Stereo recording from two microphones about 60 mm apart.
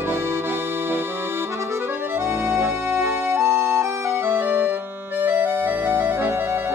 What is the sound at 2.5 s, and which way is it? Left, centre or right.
Music, right.